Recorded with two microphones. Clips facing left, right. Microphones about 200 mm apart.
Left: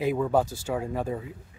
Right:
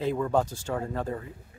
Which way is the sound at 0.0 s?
10° left (ahead or behind).